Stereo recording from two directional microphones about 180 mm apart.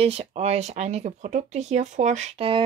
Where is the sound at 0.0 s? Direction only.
35° right (ahead or behind).